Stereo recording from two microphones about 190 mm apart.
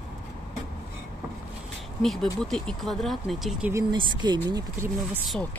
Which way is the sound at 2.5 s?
Centre (ahead or behind).